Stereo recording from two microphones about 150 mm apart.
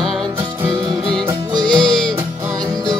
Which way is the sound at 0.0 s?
Centre (ahead or behind).